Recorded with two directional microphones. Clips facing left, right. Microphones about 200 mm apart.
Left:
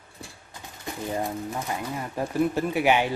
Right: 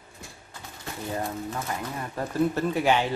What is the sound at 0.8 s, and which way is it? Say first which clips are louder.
Speech: left 2 dB; 15° left (ahead or behind).